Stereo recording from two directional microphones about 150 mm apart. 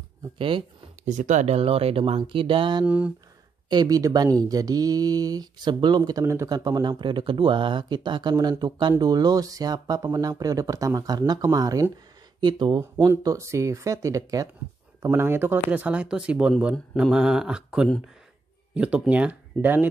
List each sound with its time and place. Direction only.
0.4 s speech: 35° right (ahead or behind)
1.0 s speech: 55° right (ahead or behind); by 2.8 s 35° right (ahead or behind)
2.8 s speech: 10° right (ahead or behind)
3.6 s speech: 25° right (ahead or behind)
12.9 s speech: 20° right (ahead or behind)